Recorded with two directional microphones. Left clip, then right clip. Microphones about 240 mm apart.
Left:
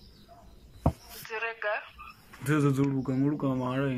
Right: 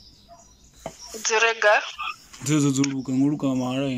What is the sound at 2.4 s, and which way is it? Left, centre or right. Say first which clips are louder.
Speech: right 5 dB; centre.